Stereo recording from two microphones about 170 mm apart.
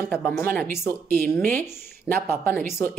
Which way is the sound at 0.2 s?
10° left (ahead or behind).